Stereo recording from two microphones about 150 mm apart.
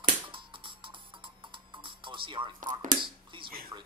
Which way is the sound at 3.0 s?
35° right (ahead or behind).